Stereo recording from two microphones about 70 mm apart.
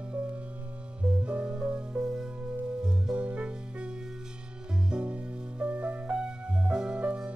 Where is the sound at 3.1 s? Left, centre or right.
Centre.